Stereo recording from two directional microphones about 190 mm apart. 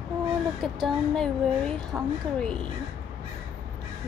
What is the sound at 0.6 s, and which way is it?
Speech, centre (ahead or behind).